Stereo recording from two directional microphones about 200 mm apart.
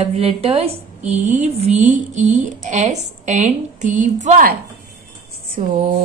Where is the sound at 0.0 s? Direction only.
30° right (ahead or behind).